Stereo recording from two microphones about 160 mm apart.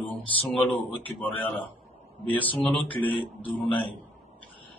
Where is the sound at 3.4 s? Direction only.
30° left (ahead or behind).